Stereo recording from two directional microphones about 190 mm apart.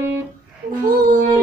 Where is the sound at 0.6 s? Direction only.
45° right (ahead or behind).